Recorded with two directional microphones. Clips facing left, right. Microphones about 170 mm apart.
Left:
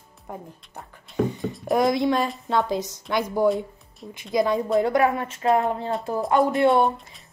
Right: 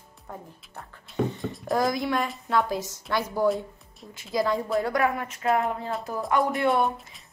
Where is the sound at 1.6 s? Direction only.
20° left (ahead or behind).